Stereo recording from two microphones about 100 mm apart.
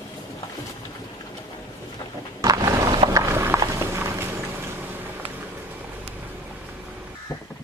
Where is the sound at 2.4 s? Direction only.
35° right (ahead or behind).